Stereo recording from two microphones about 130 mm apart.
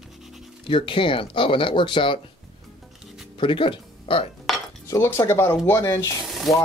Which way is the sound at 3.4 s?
40° left (ahead or behind).